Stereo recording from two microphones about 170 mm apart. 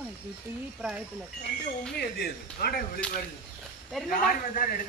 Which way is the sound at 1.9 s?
65° left (ahead or behind).